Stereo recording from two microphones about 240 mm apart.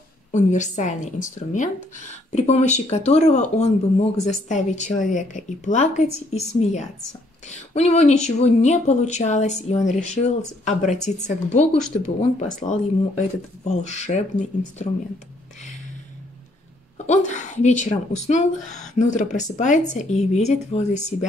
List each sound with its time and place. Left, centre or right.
0.3 s a woman's voice: left
17.0 s a woman's voice: left